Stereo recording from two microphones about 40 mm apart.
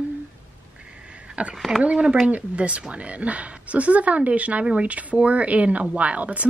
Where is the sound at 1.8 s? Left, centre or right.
Right.